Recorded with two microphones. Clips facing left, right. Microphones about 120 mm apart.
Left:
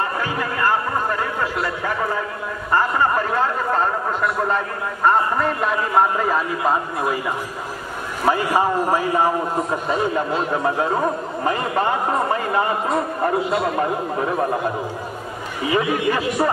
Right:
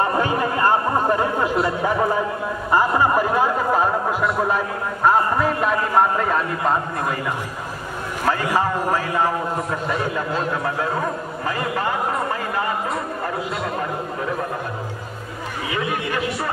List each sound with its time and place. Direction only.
0.2 s a man's voice: 25° right (ahead or behind); by 13.7 s 30° left (ahead or behind)
15.7 s a man's voice: 25° left (ahead or behind)